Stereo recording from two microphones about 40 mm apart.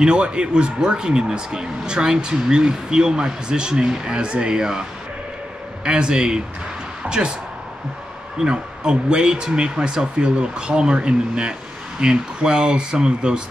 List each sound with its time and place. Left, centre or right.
0.0 s speech: right
5.9 s speech: right
8.4 s speech: right